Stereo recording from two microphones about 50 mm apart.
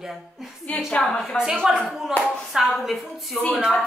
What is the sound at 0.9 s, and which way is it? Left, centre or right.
Speech, centre.